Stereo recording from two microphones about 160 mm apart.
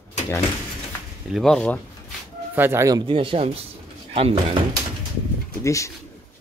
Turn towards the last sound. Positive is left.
turn(degrees=20)  # may be behind; listen again after turning